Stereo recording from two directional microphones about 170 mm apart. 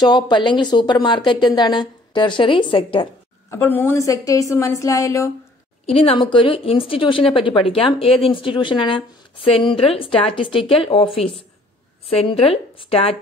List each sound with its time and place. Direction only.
0.0 s speech: 25° left (ahead or behind)
3.4 s a woman's voice: 15° left (ahead or behind)
5.9 s a woman's voice: 35° left (ahead or behind)
12.2 s a woman's voice: 35° left (ahead or behind)